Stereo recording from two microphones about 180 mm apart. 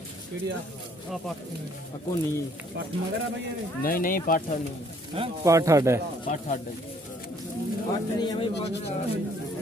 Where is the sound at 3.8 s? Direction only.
50° left (ahead or behind).